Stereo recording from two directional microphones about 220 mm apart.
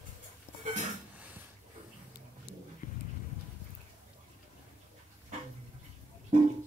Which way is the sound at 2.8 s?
40° left (ahead or behind).